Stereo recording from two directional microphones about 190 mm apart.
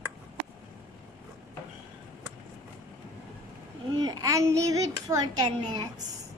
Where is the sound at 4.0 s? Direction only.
20° right (ahead or behind).